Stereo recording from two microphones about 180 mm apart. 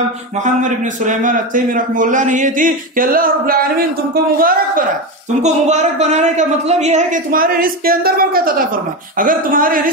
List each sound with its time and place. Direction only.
0.6 s a man's voice: 45° right (ahead or behind)
5.4 s a man's voice: 40° right (ahead or behind)